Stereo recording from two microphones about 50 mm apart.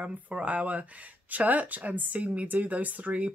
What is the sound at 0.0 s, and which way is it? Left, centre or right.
Speech, right.